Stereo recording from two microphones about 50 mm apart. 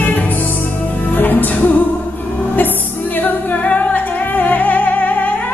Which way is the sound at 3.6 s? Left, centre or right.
Left.